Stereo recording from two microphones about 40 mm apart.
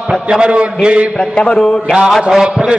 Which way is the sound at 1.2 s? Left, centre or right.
Left.